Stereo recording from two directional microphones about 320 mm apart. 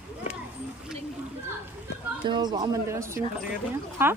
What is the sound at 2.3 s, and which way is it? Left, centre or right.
Speech, centre.